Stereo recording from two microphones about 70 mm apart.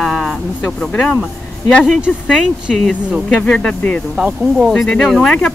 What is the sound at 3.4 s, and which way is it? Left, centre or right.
Speech, centre.